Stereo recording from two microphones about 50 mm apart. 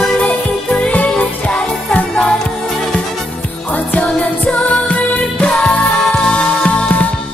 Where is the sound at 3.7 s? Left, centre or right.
Left.